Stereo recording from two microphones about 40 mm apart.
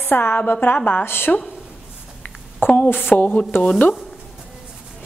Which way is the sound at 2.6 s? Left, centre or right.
Left.